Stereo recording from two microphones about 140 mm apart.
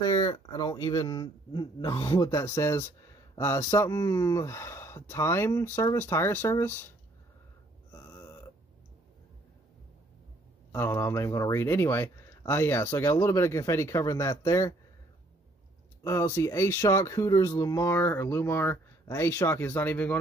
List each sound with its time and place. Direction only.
0.0 s speech: 30° left (ahead or behind)
7.9 s burping: 20° left (ahead or behind)
10.7 s speech: 20° left (ahead or behind)
16.0 s speech: 20° left (ahead or behind)